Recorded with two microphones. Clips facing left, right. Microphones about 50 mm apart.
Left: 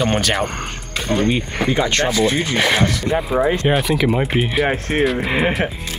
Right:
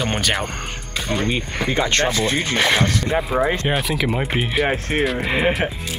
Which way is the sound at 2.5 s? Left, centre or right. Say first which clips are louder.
Left 1 dB; centre.